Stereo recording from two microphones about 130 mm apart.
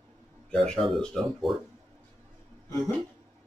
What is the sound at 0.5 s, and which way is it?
Speech, 5° left (ahead or behind).